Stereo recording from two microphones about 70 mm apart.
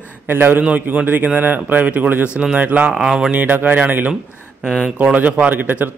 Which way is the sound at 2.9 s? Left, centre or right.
Centre.